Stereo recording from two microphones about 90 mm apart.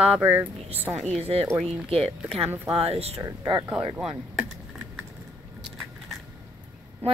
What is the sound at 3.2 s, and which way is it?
Speech, 45° right (ahead or behind).